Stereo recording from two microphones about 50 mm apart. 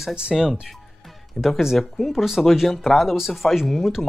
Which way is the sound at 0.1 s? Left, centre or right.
Centre.